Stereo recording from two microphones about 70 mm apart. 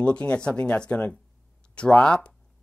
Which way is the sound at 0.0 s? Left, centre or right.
Centre.